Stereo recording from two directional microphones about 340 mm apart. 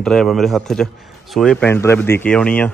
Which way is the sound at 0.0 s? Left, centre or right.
Centre.